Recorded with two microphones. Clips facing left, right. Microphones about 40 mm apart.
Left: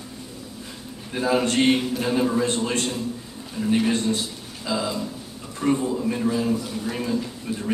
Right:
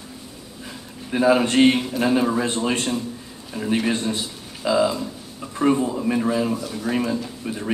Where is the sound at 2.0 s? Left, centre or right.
Centre.